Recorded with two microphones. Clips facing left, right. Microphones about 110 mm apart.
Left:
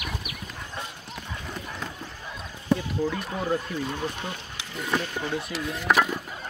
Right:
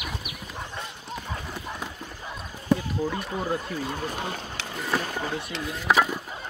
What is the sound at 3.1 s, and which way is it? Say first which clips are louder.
Speech: left 1 dB; 15° right (ahead or behind).